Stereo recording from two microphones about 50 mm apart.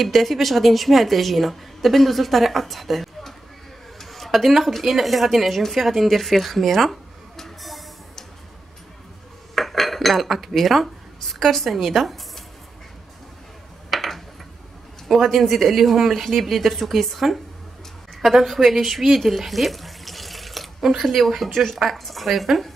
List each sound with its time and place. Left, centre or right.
0.0 s a woman's voice: centre
9.6 s cutlery: centre
13.8 s a sound: centre
15.0 s a woman's voice: centre